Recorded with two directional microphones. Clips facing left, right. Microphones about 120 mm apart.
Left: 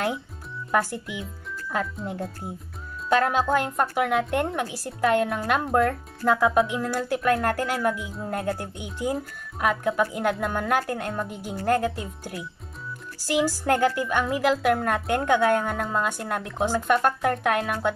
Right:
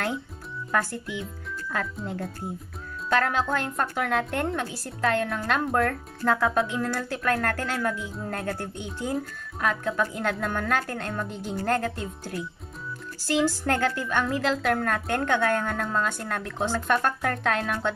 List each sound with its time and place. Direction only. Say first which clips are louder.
0.7 s a woman's voice: left 3 dB; 15° left (ahead or behind)
3.1 s a woman's voice: left 3 dB; 15° left (ahead or behind)